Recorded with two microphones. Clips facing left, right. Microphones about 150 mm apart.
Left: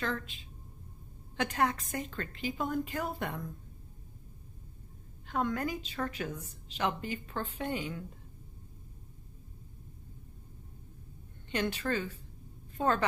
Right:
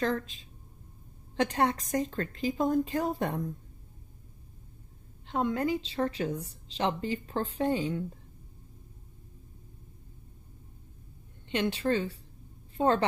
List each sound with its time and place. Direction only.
0.0 s a woman's voice: 35° right (ahead or behind)
5.3 s a woman's voice: 25° right (ahead or behind)
11.5 s a woman's voice: 25° right (ahead or behind)